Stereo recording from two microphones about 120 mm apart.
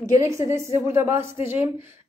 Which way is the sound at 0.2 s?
25° right (ahead or behind).